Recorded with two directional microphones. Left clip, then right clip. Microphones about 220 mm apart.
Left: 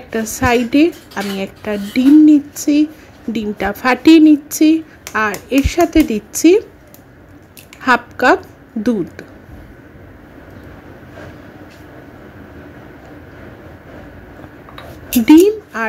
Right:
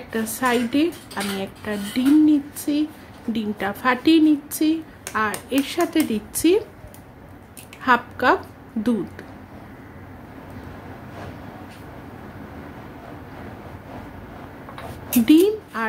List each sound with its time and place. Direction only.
0.1 s speech: 20° left (ahead or behind)
7.8 s speech: 25° left (ahead or behind)
15.0 s a woman's voice: 20° left (ahead or behind)